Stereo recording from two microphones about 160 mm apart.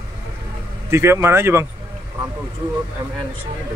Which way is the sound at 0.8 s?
15° right (ahead or behind).